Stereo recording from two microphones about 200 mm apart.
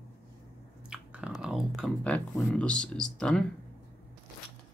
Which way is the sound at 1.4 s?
Centre (ahead or behind).